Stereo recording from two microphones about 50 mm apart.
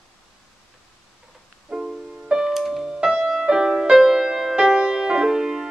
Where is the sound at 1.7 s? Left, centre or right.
Centre.